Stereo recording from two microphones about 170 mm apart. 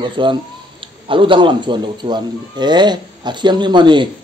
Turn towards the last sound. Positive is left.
turn(degrees=-25)  # may be behind; listen again after turning